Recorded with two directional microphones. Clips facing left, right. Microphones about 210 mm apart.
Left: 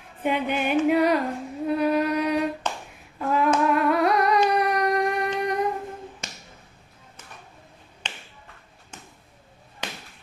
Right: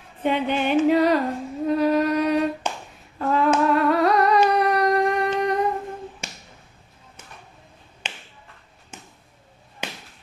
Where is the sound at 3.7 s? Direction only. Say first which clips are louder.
Right 2 dB; 10° left (ahead or behind).